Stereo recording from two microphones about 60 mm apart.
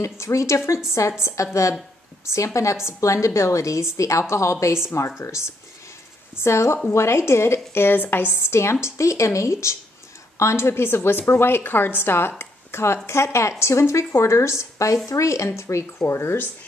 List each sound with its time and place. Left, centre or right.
0.0 s a woman's voice: left
16.0 s speech: left